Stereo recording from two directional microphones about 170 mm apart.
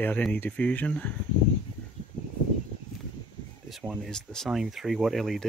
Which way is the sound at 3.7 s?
Centre (ahead or behind).